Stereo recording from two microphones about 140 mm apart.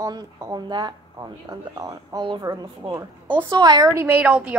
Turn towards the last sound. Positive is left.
turn(degrees=-10)  # may be behind; listen again after turning